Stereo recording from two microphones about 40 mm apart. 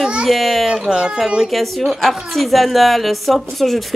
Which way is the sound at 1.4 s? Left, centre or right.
Centre.